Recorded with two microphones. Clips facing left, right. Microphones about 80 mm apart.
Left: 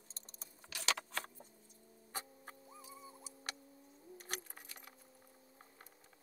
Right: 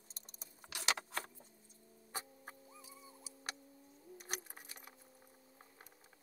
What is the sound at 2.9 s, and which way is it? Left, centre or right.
Vehicle, left.